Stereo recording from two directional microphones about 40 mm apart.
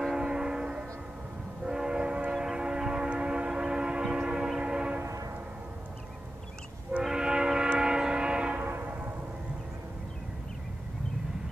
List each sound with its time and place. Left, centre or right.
0.0 s train: centre
1.6 s train horn: right
2.3 s train: centre
7.0 s train: centre
8.6 s music: right